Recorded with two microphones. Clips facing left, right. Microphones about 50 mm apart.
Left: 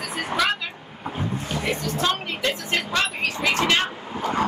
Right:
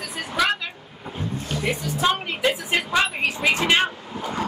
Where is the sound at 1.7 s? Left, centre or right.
Centre.